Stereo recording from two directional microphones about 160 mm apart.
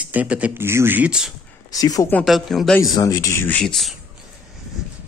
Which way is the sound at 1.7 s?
20° left (ahead or behind).